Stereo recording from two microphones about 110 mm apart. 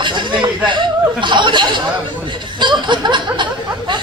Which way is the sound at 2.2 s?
45° right (ahead or behind).